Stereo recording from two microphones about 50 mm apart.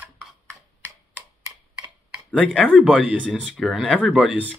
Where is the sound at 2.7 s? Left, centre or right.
Centre.